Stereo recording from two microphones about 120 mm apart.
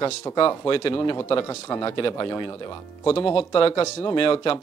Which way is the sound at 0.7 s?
45° left (ahead or behind).